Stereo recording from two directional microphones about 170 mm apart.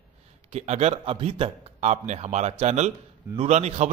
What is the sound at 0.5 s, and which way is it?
A man's voice, 40° right (ahead or behind).